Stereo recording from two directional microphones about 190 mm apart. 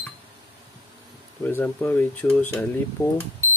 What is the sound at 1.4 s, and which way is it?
Speech, 10° left (ahead or behind).